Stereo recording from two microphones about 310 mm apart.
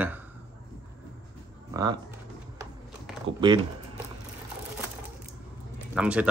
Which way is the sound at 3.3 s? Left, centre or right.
Centre.